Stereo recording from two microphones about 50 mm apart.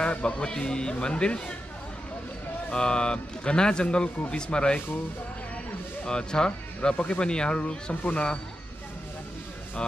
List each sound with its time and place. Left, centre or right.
0.0 s speech: left
2.7 s speech: centre
6.0 s speech: centre
7.9 s speech: left